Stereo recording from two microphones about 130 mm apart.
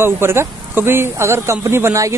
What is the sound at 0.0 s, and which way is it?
Speech, 20° right (ahead or behind).